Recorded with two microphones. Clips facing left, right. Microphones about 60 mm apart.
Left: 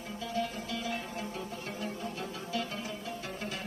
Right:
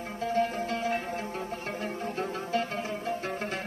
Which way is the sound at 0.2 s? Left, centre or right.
Right.